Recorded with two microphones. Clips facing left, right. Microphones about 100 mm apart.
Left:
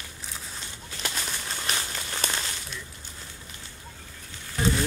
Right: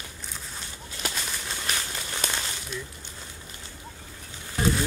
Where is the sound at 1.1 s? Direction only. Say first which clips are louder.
Even; centre (ahead or behind).